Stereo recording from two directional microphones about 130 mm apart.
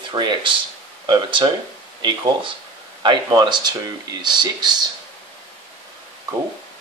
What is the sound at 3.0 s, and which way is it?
Speech, 35° right (ahead or behind).